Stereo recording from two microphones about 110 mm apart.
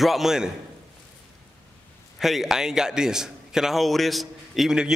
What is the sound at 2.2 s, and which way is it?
A man's voice, centre (ahead or behind).